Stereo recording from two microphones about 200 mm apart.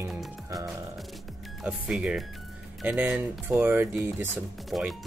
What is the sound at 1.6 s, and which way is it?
Speech, 5° right (ahead or behind).